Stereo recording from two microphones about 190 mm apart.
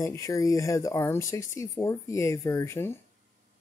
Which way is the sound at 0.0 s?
15° left (ahead or behind).